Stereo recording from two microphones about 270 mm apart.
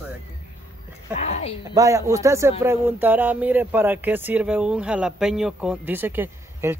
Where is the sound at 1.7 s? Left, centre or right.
Centre.